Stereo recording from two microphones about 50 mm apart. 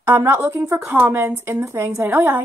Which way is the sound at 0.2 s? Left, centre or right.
Right.